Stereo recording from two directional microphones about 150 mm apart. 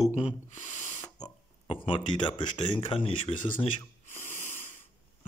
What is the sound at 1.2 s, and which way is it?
Speech, 35° left (ahead or behind).